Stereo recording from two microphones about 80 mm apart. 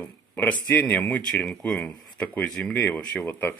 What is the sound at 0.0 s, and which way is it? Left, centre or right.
Speech, left.